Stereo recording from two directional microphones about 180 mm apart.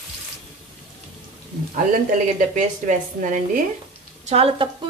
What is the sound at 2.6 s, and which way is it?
A woman's voice, 45° right (ahead or behind).